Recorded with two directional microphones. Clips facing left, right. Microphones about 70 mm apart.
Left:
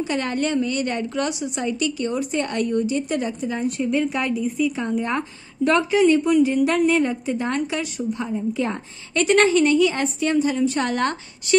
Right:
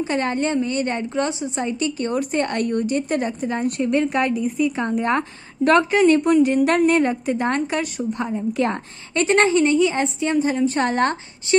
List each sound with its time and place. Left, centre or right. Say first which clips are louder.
0.0 s a woman's voice: right 2 dB; right
2.0 s a woman's voice: right 2 dB; right
9.1 s a woman's voice: even; right